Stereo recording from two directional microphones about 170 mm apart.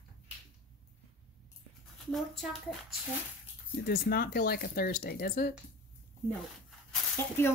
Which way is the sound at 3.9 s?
60° left (ahead or behind).